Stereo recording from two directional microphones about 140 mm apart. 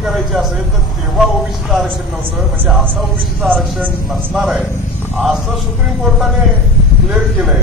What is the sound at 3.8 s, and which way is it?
Speech, 15° right (ahead or behind).